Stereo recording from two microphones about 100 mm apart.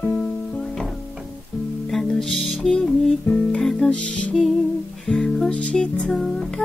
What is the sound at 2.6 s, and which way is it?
Music, 5° left (ahead or behind).